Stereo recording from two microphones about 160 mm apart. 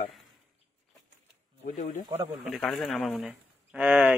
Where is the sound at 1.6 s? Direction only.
55° left (ahead or behind).